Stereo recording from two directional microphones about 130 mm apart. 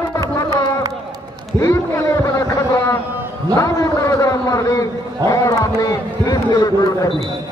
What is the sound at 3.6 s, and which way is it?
A man's voice, 25° left (ahead or behind).